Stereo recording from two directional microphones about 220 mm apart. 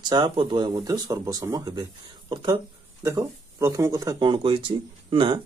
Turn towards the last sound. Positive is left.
turn(degrees=-20)  # may be behind; listen again after turning